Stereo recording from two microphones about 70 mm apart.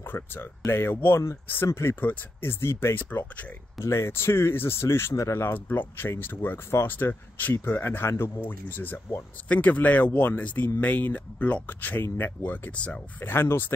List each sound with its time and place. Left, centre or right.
0.0 s speech: left
2.0 s speech: left
2.6 s speech: left; by 13.0 s centre
13.2 s speech: left